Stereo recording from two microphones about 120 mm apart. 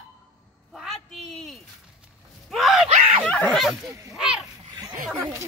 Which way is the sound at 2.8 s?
60° right (ahead or behind).